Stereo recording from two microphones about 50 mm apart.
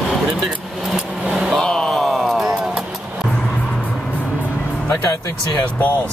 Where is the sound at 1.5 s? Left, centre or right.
Centre.